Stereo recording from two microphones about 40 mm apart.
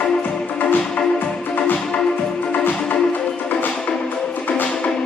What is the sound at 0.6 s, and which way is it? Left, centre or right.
Music, left.